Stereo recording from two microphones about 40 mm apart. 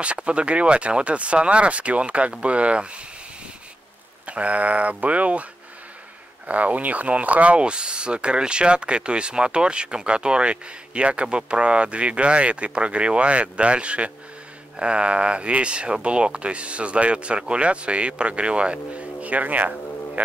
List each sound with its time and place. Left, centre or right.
0.0 s speech: right
4.3 s speech: right
19.2 s speech: right